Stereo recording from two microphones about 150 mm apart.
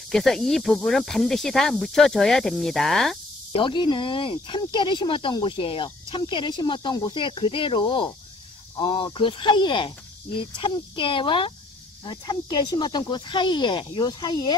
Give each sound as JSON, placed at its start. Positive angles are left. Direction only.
{"t": 0.1, "sound": "speech", "side_deg": 0}
{"t": 3.5, "sound": "speech", "side_deg": 30}